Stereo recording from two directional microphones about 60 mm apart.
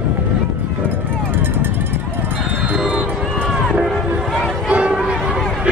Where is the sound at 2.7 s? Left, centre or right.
Centre.